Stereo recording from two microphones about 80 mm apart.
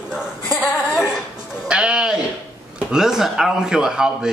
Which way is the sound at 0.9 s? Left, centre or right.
Centre.